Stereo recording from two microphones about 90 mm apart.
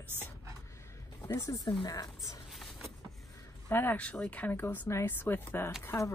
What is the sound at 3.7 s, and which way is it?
Speech, 25° left (ahead or behind).